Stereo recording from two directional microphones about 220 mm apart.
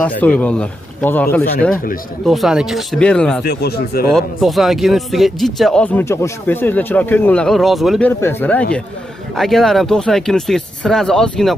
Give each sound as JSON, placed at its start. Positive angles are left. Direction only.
{"t": 0.4, "sound": "speech", "side_deg": 5}
{"t": 3.4, "sound": "speech", "side_deg": 45}
{"t": 4.1, "sound": "speech", "side_deg": 0}
{"t": 8.2, "sound": "speech", "side_deg": 10}